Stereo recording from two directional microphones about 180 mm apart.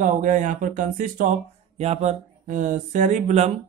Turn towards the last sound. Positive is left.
turn(degrees=-40)  # may be behind; listen again after turning